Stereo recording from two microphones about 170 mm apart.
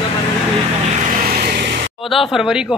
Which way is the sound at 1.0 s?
55° right (ahead or behind).